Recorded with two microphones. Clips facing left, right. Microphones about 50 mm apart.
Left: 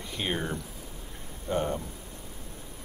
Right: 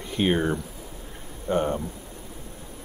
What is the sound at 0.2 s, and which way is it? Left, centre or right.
Speech, right.